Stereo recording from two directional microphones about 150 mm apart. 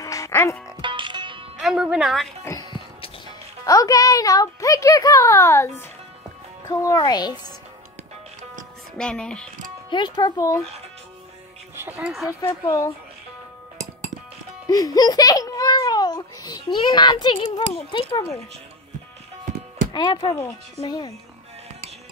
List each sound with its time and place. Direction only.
0.0 s music: 20° left (ahead or behind)
0.7 s music: 30° right (ahead or behind)
1.6 s speech: 5° right (ahead or behind)
2.4 s music: 25° left (ahead or behind)
3.6 s speech: 25° left (ahead or behind)
8.9 s speech: 5° left (ahead or behind)
9.8 s speech: 30° left (ahead or behind)
12.0 s speech: centre (ahead or behind)
12.3 s speech: 20° left (ahead or behind)
14.7 s a child's voice: 25° left (ahead or behind)
19.9 s speech: 30° left (ahead or behind)
20.3 s speech: 20° left (ahead or behind)